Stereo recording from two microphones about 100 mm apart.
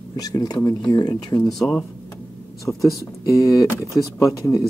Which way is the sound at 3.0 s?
35° left (ahead or behind).